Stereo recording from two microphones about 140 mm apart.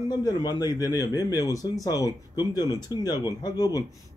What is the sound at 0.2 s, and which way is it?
Speech, 30° left (ahead or behind).